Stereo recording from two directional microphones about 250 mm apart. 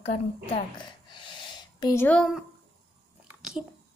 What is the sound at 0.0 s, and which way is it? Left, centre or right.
A woman's voice, left.